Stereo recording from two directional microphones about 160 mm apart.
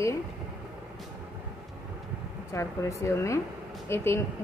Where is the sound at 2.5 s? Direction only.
20° left (ahead or behind).